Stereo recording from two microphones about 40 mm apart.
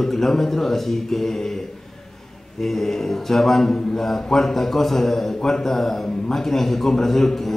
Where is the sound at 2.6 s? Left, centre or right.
Centre.